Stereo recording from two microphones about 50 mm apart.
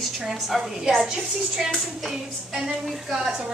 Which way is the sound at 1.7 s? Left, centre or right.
Centre.